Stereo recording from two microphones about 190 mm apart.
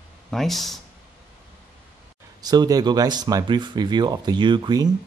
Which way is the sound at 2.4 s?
20° right (ahead or behind).